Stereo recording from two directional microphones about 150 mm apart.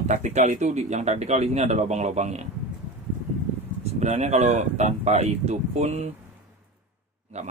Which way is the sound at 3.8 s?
50° right (ahead or behind).